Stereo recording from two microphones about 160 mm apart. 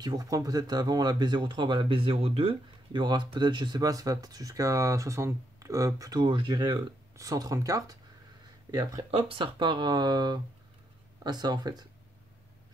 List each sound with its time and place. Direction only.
0.0 s speech: 25° right (ahead or behind)
9.1 s speech: 30° right (ahead or behind)